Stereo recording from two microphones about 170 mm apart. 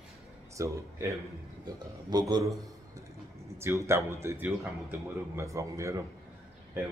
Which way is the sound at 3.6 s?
15° right (ahead or behind).